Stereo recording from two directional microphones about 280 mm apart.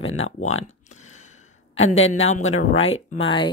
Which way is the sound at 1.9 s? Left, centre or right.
Left.